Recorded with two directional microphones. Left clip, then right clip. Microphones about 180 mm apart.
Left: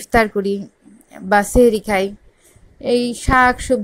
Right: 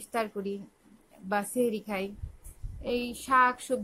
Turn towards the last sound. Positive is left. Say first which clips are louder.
# left 10 dB
turn(degrees=25)  # may be behind; listen again after turning